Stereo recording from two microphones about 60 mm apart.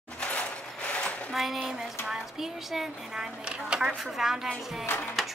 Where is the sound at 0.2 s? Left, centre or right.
Left.